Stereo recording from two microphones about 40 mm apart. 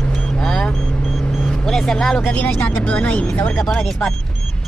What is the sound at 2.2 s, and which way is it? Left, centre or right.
Speech, left.